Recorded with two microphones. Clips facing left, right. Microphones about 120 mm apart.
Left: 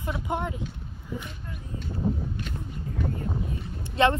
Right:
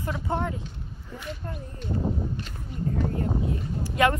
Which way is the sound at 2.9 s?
40° right (ahead or behind).